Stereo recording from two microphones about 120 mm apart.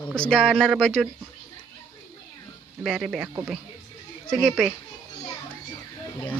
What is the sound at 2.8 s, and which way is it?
Speech, 5° right (ahead or behind).